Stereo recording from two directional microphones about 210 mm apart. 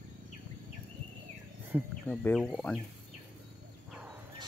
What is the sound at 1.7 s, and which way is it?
Speech, 5° right (ahead or behind).